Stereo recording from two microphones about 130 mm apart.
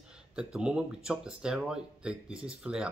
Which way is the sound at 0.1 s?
5° right (ahead or behind).